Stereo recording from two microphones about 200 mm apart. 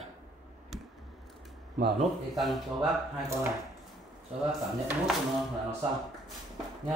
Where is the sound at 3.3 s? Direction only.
15° right (ahead or behind).